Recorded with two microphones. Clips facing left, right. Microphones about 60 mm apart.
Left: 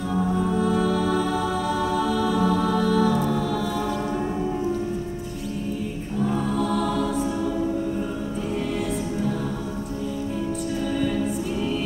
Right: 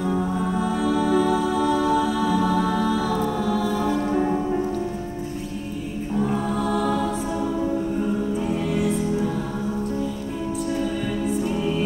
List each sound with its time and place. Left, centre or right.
0.6 s music: centre
6.6 s music: centre
8.7 s music: centre